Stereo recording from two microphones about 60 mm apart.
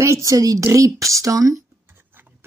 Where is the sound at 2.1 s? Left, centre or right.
Right.